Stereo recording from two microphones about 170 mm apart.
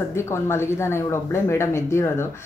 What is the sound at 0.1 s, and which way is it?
A woman's voice, 15° left (ahead or behind).